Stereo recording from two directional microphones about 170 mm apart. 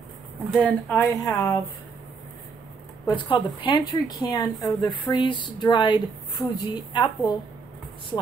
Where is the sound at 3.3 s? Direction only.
25° left (ahead or behind).